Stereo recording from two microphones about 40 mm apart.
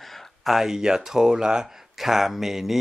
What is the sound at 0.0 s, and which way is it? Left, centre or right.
Speech, centre.